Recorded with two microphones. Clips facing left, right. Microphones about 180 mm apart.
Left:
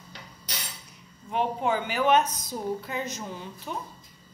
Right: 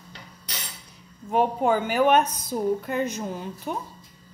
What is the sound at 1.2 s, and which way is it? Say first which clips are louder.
A woman's voice: right 5 dB; 45° right (ahead or behind).